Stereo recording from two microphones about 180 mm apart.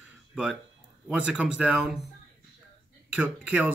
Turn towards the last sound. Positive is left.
turn(degrees=-5)  # may be behind; listen again after turning